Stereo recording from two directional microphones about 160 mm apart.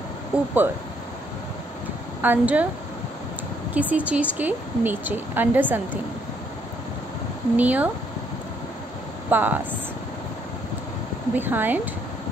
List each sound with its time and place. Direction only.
0.3 s a woman's voice: 5° right (ahead or behind)
2.2 s a woman's voice: 10° right (ahead or behind)
3.9 s a woman's voice: 10° right (ahead or behind)
7.5 s a woman's voice: 10° right (ahead or behind)
9.3 s a woman's voice: 10° right (ahead or behind)
11.3 s a woman's voice: 10° right (ahead or behind)